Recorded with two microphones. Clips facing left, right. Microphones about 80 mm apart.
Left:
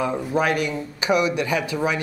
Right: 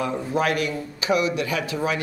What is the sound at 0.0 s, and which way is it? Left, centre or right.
Speech, left.